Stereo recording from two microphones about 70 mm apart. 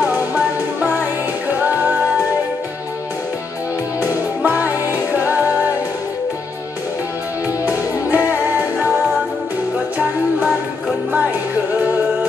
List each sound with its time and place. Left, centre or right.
1.6 s music: right
4.5 s music: right
8.1 s music: right
10.4 s music: centre